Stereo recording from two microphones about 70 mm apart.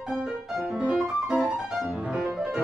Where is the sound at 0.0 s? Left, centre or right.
Centre.